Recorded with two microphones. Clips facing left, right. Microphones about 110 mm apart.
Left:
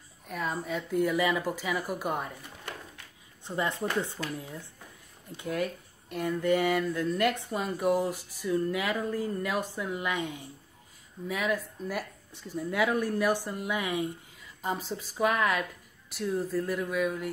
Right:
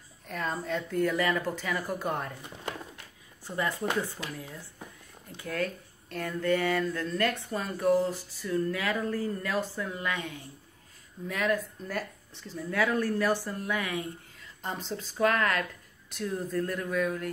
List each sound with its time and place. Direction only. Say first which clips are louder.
0.3 s speech: even; 5° left (ahead or behind)
3.4 s speech: even; 20° left (ahead or behind)
11.2 s speech: right 1 dB; 5° left (ahead or behind)
14.6 s speech: left 3 dB; 5° left (ahead or behind)